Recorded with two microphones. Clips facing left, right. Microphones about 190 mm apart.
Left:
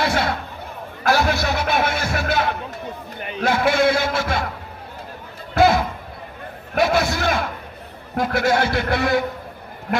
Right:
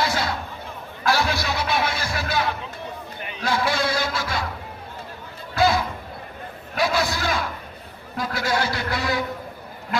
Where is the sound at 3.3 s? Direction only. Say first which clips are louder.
Left 5 dB; 50° left (ahead or behind).